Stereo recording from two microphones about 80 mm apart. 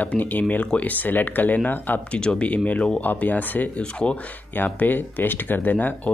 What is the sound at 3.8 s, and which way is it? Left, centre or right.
Speech, centre.